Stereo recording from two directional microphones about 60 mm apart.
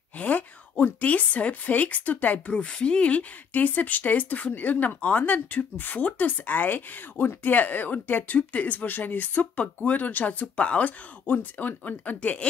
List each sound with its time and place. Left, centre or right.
0.2 s speech: left